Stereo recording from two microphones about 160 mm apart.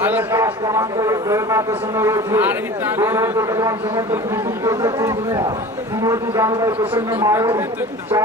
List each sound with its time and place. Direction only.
0.0 s a man's voice: 15° right (ahead or behind)